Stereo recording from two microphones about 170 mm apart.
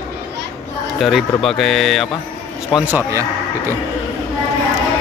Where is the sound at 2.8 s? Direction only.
15° right (ahead or behind).